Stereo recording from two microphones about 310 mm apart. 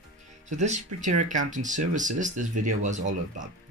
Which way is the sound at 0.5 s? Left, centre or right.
Right.